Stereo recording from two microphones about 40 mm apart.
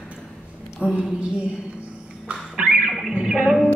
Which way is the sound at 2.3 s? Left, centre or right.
Right.